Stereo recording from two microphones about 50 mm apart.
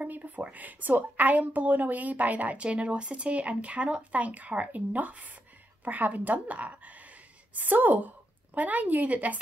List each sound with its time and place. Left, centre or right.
0.0 s a woman's voice: right